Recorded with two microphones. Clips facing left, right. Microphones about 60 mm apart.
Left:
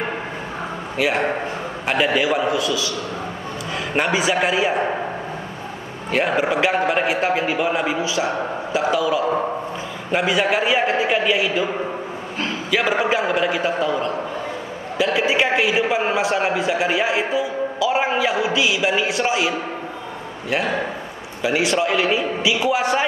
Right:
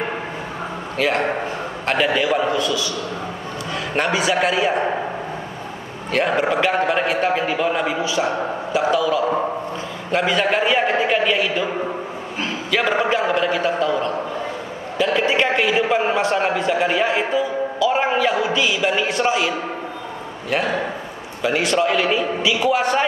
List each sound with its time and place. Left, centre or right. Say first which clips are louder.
0.9 s a man's voice: even; centre
3.9 s a man's voice: even; centre
6.1 s a man's voice: right 1 dB; centre
12.7 s a man's voice: even; centre